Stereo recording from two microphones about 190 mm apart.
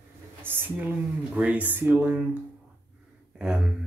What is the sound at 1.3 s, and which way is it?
Speech, 5° right (ahead or behind).